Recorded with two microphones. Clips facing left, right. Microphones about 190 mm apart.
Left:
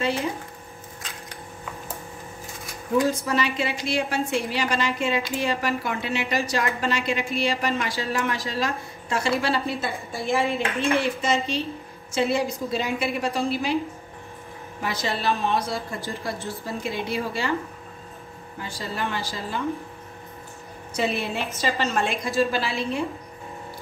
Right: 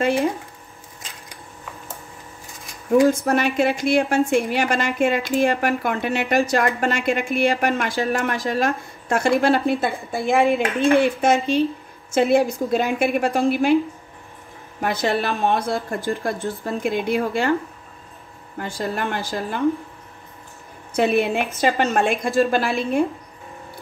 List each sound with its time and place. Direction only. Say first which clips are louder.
3.1 s a woman's voice: right 5 dB; 50° right (ahead or behind)
14.8 s a woman's voice: right 7 dB; 55° right (ahead or behind)
18.6 s a woman's voice: right 5 dB; 55° right (ahead or behind)
20.9 s a woman's voice: right 7 dB; 55° right (ahead or behind)